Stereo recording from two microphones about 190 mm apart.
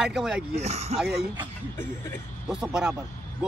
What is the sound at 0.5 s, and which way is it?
Speech, 35° right (ahead or behind).